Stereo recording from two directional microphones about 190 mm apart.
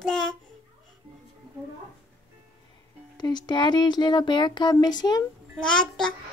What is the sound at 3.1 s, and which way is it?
Speech, 20° left (ahead or behind).